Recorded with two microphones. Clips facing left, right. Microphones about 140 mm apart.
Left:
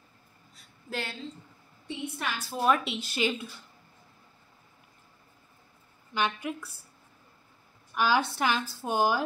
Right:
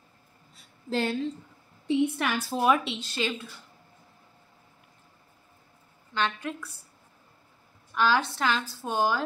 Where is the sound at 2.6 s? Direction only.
Centre (ahead or behind).